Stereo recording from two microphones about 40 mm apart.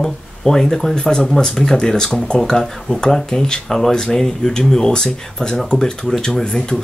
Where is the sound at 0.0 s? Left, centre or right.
Centre.